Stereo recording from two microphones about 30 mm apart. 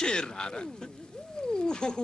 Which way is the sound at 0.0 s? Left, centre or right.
Left.